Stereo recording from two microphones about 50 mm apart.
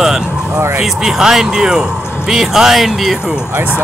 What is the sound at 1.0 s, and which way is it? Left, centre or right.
Speech, centre.